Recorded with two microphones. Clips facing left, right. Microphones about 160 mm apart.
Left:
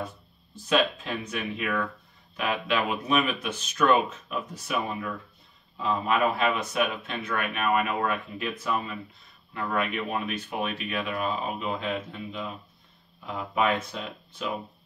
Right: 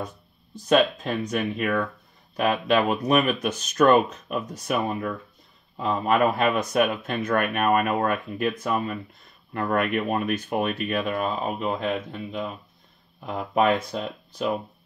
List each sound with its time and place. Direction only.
0.7 s speech: 45° right (ahead or behind)